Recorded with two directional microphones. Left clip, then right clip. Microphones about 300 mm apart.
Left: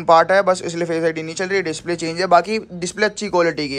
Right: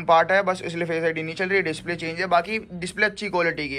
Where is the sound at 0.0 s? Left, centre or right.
Centre.